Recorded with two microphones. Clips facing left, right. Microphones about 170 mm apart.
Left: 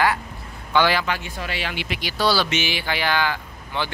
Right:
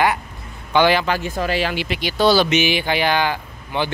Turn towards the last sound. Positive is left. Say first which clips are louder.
# right 5 dB
turn(degrees=-15)  # may be behind; listen again after turning